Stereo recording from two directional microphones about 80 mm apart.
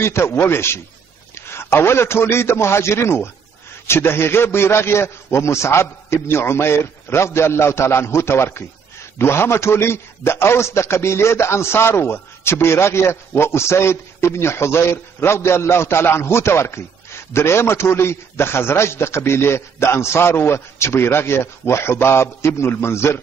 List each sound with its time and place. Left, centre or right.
0.0 s a man's voice: left